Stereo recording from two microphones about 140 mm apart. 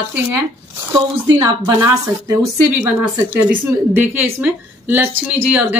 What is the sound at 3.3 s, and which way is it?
A woman's voice, 10° right (ahead or behind).